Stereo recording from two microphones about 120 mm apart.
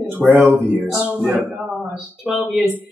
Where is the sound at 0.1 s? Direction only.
15° right (ahead or behind).